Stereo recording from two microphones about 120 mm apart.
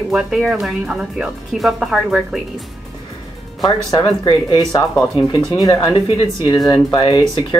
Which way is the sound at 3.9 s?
40° left (ahead or behind).